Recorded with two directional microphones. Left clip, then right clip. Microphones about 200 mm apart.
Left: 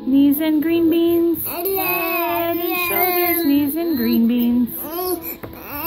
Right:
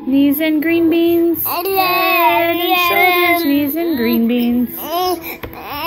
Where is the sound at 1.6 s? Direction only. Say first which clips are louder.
Right 9 dB; 20° left (ahead or behind).